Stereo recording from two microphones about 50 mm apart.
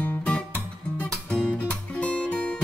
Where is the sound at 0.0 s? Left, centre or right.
Left.